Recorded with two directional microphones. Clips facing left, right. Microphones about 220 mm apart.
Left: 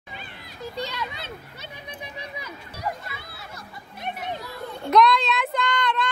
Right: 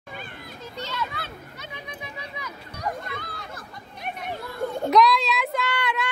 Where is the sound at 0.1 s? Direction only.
50° right (ahead or behind).